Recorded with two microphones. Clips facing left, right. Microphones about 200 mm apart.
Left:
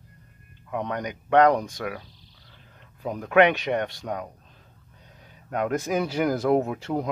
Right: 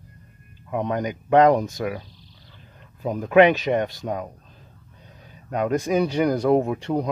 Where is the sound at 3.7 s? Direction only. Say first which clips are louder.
Right 4 dB; 15° right (ahead or behind).